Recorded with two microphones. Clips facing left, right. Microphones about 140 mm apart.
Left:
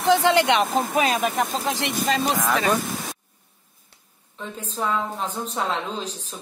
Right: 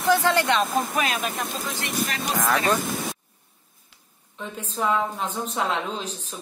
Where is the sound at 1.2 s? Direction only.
75° left (ahead or behind); by 2.2 s 90° left.